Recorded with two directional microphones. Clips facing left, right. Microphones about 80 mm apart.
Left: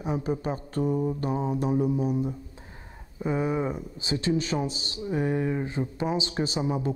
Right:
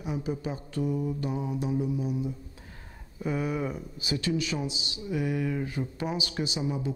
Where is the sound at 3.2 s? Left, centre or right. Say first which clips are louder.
Left 3 dB; left.